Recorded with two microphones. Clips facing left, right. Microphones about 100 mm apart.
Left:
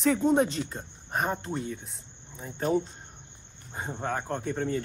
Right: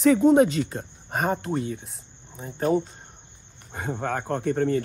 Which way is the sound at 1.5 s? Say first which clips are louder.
Right 5 dB; 60° right (ahead or behind).